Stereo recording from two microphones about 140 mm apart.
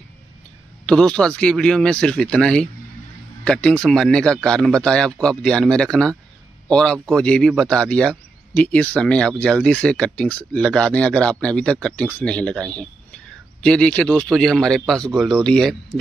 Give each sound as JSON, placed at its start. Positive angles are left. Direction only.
{"t": 0.8, "sound": "speech", "side_deg": 5}